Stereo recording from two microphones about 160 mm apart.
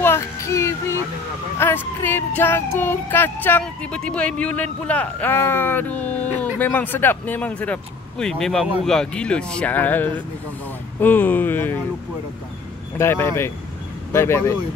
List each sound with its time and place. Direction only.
0.0 s a sound: 15° left (ahead or behind)
1.6 s speech: 15° left (ahead or behind)
12.9 s speech: 15° left (ahead or behind)